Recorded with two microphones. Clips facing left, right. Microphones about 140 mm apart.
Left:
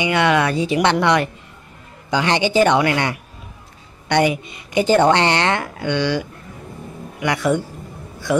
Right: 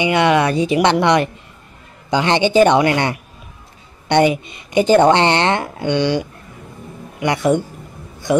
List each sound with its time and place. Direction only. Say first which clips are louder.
0.0 s speech: right 3 dB; 20° right (ahead or behind)